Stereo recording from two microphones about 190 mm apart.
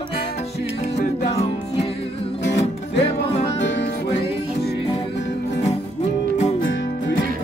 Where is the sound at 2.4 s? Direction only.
70° left (ahead or behind).